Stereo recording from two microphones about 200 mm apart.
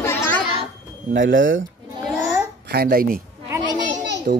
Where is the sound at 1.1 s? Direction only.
70° right (ahead or behind).